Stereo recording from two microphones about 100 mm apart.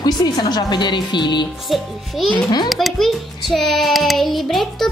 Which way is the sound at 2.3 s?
45° left (ahead or behind).